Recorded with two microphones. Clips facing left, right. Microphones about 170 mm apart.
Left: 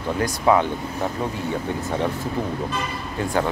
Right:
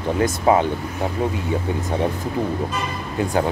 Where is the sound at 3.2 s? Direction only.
15° right (ahead or behind).